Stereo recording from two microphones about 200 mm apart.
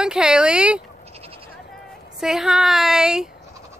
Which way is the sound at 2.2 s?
5° right (ahead or behind).